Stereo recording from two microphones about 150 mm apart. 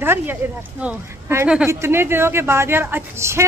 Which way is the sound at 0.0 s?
15° right (ahead or behind).